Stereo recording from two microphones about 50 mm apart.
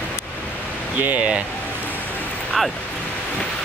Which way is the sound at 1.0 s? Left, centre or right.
Right.